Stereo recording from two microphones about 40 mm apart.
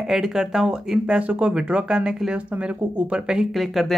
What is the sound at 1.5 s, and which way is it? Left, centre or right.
Speech, right.